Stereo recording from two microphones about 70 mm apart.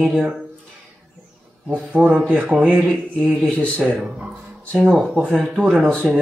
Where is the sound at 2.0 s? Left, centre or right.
Right.